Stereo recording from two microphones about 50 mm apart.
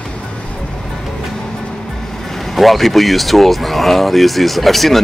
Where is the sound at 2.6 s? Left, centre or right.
Centre.